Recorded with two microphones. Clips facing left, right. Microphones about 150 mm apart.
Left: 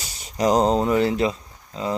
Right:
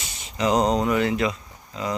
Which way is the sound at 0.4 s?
35° left (ahead or behind).